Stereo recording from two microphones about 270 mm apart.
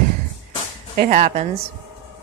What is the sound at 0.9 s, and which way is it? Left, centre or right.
Speech, right.